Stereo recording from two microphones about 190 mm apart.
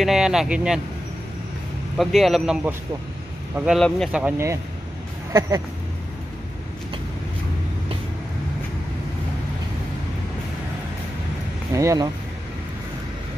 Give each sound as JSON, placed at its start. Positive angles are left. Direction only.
{"t": 0.0, "sound": "speech", "side_deg": 0}
{"t": 2.0, "sound": "speech", "side_deg": 0}
{"t": 11.7, "sound": "speech", "side_deg": -15}